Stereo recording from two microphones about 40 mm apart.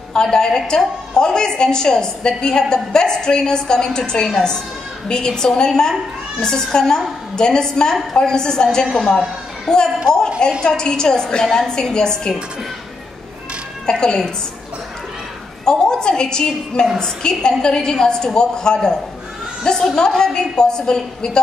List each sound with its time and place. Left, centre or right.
0.1 s a woman's voice: centre
13.8 s a woman's voice: centre
15.6 s a woman's voice: centre